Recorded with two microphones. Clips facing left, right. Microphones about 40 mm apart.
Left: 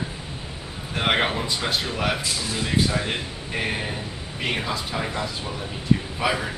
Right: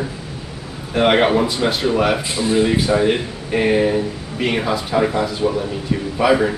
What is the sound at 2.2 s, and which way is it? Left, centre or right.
Speech, right.